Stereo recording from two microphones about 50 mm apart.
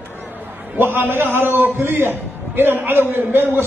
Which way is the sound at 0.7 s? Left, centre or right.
Right.